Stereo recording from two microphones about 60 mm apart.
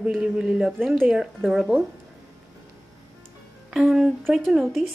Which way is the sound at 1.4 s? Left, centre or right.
Centre.